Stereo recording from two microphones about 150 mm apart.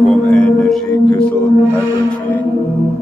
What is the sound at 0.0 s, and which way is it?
Singing bowl, 5° left (ahead or behind).